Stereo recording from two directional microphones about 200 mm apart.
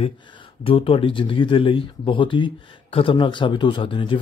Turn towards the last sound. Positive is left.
turn(degrees=25)  # may be behind; listen again after turning